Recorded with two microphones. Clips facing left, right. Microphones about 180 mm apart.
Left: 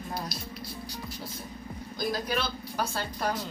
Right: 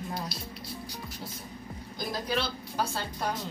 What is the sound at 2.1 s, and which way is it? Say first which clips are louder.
Speech: left 1 dB; 30° right (ahead or behind).